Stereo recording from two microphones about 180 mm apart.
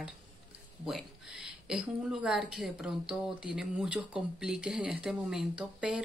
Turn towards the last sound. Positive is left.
turn(degrees=-5)  # may be behind; listen again after turning